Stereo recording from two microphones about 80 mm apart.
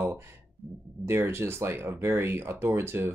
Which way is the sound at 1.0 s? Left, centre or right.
Right.